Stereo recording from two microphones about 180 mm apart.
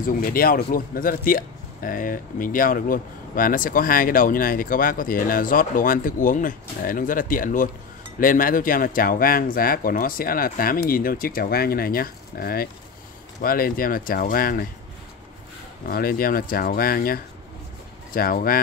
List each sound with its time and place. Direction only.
0.0 s speech: 55° left (ahead or behind)
15.8 s speech: 55° left (ahead or behind)